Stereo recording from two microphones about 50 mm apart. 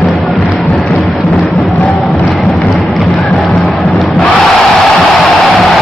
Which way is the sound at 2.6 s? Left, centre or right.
Centre.